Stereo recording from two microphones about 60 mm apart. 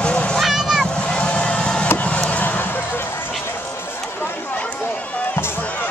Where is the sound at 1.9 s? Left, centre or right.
Left.